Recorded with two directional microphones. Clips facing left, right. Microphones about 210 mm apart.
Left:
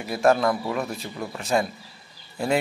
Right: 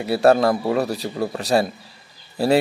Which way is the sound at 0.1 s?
35° right (ahead or behind).